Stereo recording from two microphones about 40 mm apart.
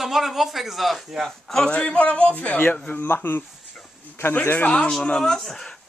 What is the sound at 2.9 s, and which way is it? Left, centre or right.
Speech, left.